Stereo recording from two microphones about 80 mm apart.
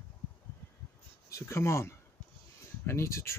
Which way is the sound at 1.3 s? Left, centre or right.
Left.